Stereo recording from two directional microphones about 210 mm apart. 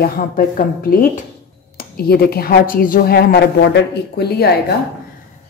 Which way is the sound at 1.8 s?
45° left (ahead or behind).